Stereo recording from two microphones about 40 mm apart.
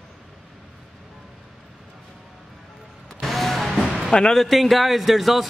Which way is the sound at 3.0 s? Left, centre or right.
Centre.